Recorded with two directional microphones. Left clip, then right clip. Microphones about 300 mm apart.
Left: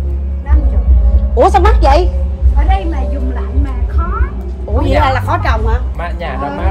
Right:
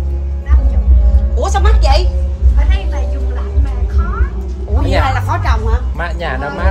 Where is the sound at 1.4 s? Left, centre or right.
Centre.